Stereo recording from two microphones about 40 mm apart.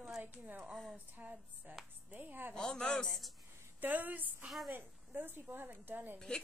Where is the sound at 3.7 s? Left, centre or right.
Right.